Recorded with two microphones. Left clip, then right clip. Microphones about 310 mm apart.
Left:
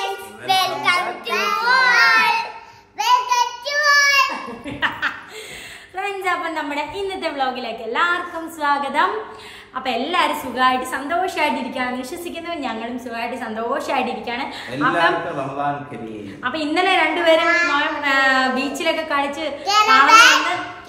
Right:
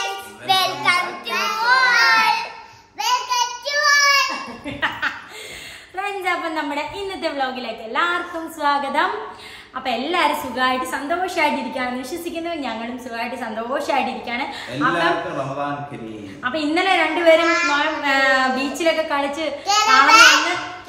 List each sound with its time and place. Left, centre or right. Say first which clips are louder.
0.5 s child singing: even; centre
4.7 s chuckle: left 1 dB; centre
5.9 s a woman's voice: left 1 dB; centre
16.4 s a woman's voice: even; centre